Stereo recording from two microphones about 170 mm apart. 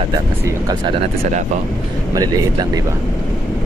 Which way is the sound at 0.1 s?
20° right (ahead or behind).